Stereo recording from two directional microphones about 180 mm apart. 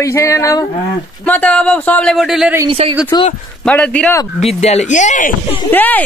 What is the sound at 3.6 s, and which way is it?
Speech, 5° left (ahead or behind).